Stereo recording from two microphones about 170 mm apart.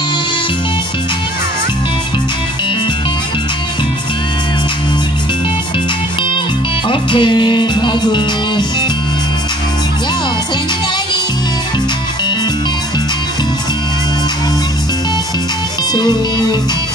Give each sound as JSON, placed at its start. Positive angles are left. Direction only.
{"t": 6.9, "sound": "music", "side_deg": 30}
{"t": 15.9, "sound": "music", "side_deg": 25}